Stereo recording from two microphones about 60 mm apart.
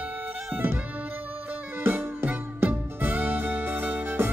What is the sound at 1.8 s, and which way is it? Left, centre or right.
Music, right.